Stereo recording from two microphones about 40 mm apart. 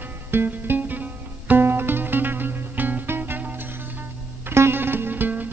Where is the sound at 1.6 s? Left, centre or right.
Right.